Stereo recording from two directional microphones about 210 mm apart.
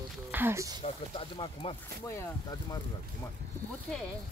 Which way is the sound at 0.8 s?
25° left (ahead or behind).